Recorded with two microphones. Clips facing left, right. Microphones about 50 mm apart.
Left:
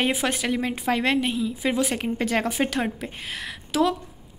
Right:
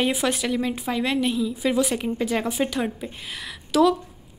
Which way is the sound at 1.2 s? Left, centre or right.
Left.